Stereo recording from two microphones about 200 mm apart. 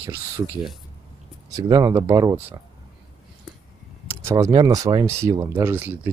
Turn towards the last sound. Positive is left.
turn(degrees=-10)  # may be behind; listen again after turning